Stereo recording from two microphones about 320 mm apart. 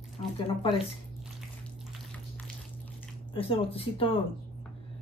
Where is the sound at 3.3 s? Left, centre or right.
Centre.